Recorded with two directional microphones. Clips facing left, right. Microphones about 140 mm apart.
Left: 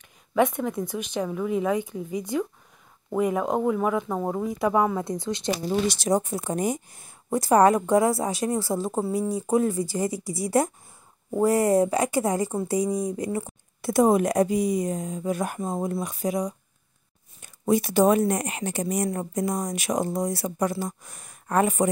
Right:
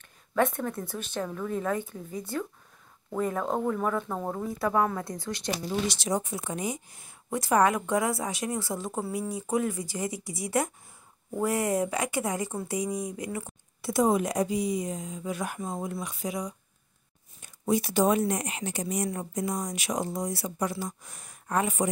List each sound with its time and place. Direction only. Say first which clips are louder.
0.3 s speech: left 4 dB; 15° left (ahead or behind)
5.7 s speech: left 6 dB; 40° left (ahead or behind)
13.7 s speech: left 5 dB; 55° left (ahead or behind)
17.4 s speech: left 4 dB; 55° left (ahead or behind)